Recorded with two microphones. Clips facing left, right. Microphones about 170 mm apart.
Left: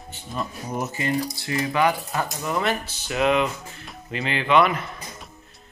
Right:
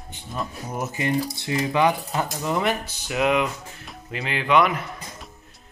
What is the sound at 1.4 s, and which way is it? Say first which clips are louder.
Speech: right 1 dB; 20° right (ahead or behind).